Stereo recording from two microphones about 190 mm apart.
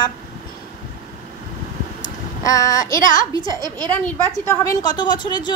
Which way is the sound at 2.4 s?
20° left (ahead or behind).